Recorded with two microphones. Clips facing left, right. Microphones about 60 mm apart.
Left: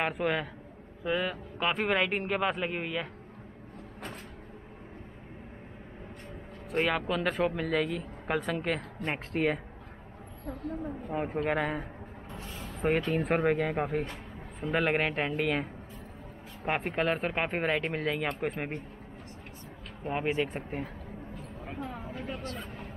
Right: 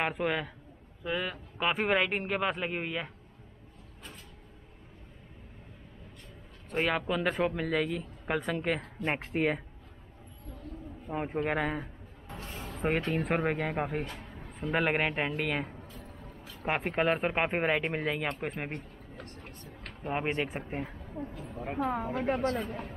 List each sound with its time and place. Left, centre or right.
0.0 s speech: centre
6.7 s speech: centre
10.4 s speech: left
11.1 s speech: centre
20.2 s speech: centre
21.4 s a sound: centre
22.2 s speech: right
22.6 s speech: centre